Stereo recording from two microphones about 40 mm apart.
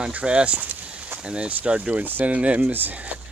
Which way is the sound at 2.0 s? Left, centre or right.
Right.